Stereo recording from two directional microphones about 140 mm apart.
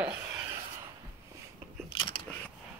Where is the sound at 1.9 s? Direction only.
35° left (ahead or behind).